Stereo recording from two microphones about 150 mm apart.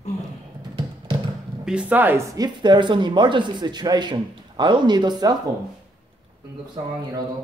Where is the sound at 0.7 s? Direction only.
30° right (ahead or behind).